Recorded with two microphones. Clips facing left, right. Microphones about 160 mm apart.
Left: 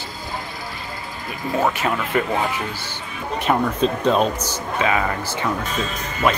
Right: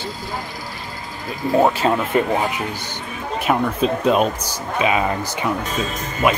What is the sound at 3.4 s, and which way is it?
Speech, 5° right (ahead or behind).